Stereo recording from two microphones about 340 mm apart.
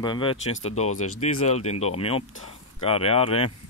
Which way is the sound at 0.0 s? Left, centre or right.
Centre.